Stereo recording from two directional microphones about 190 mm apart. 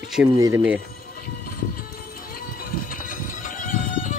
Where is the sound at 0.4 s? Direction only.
15° right (ahead or behind).